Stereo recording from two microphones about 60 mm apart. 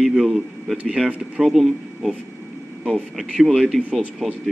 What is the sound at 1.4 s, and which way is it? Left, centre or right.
Speech, centre.